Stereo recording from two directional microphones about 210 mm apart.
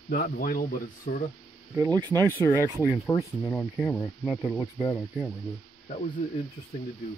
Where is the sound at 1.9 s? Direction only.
20° right (ahead or behind).